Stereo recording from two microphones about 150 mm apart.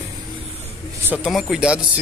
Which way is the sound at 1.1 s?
Centre (ahead or behind).